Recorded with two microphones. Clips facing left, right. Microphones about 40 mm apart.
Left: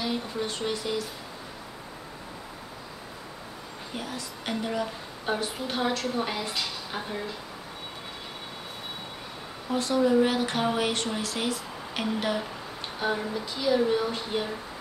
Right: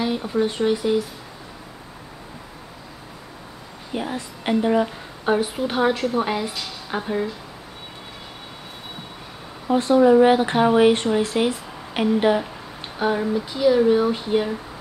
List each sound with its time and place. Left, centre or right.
0.0 s speech: centre
3.9 s a woman's voice: right
9.7 s speech: right
13.0 s speech: centre